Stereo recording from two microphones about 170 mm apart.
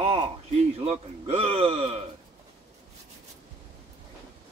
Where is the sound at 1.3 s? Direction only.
35° right (ahead or behind).